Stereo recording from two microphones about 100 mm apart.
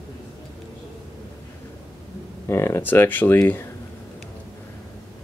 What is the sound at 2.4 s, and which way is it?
Speech, 25° left (ahead or behind).